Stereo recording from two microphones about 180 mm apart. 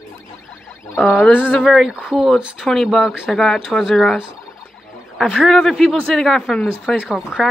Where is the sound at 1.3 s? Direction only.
10° left (ahead or behind).